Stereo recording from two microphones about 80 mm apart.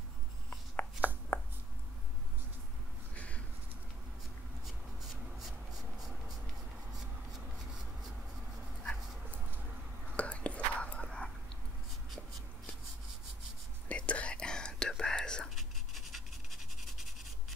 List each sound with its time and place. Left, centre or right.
0.7 s chopping: left
3.2 s a sound: centre
5.4 s writing: centre
7.3 s a sound: centre
10.1 s whispering: centre
13.8 s whispering: centre
15.5 s pant: centre